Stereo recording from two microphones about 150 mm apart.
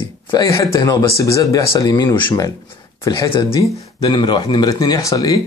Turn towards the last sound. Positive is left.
turn(degrees=25)  # may be behind; listen again after turning